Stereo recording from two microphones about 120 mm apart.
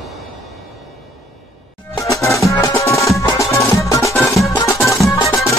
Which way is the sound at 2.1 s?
25° left (ahead or behind).